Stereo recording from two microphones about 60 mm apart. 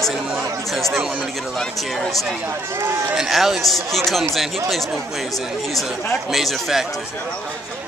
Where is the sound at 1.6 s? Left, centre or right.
Centre.